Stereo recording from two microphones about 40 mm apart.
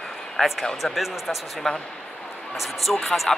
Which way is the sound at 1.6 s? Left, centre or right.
Centre.